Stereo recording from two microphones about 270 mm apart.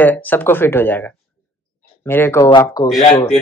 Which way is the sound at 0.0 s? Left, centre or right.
Centre.